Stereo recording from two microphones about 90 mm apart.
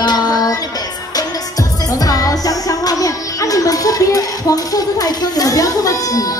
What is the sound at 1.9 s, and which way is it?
A woman's voice, 45° left (ahead or behind).